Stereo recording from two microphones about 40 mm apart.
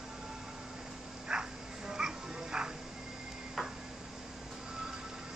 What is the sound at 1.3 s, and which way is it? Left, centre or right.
Bow-wow, centre.